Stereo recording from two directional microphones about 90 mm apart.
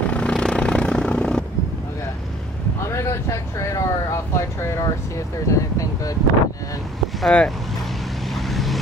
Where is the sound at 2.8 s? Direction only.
35° left (ahead or behind).